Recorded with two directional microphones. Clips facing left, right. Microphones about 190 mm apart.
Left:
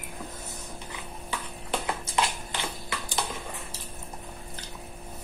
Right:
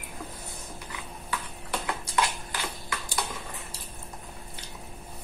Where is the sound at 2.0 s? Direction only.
25° left (ahead or behind).